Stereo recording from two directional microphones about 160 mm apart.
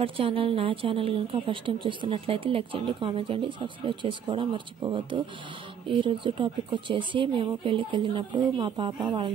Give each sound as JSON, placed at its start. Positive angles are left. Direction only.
{"t": 0.0, "sound": "a woman's voice", "side_deg": -35}